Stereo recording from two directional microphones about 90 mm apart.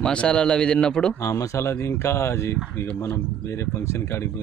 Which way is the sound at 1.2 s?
35° left (ahead or behind).